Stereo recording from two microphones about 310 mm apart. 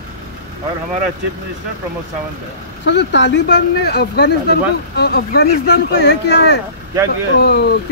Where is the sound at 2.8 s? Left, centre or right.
Left.